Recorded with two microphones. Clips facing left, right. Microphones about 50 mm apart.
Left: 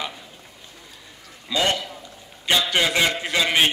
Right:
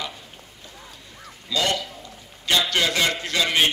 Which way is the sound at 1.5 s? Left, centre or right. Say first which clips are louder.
Left 1 dB; left.